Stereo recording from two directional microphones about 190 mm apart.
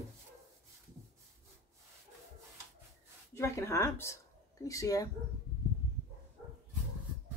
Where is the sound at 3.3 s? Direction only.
15° left (ahead or behind).